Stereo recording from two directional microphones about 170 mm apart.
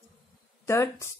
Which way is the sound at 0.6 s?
15° left (ahead or behind).